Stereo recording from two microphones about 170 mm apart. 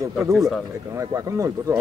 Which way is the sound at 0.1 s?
Centre (ahead or behind).